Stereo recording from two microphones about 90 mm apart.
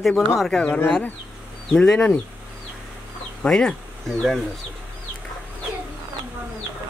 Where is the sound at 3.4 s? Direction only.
5° left (ahead or behind).